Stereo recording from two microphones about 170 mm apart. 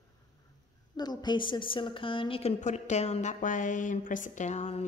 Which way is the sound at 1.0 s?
25° left (ahead or behind).